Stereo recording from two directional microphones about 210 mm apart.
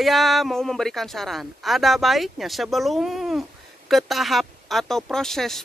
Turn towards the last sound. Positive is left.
turn(degrees=0)  # may be behind; listen again after turning